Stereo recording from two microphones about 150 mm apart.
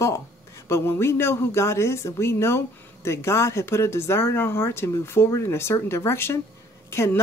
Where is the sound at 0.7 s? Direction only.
15° left (ahead or behind).